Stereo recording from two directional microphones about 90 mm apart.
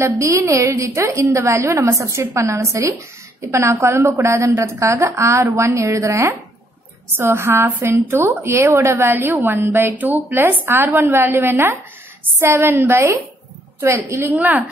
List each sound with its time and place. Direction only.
0.0 s a woman's voice: 35° right (ahead or behind)
14.3 s a woman's voice: 20° right (ahead or behind)